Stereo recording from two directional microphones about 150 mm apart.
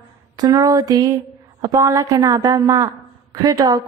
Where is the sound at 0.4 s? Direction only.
25° right (ahead or behind).